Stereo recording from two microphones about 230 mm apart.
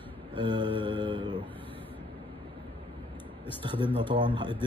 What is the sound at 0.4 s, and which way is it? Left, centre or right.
Mantra, right.